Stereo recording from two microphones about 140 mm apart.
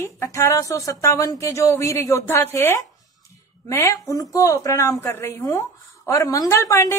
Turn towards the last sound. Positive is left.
turn(degrees=20)  # may be behind; listen again after turning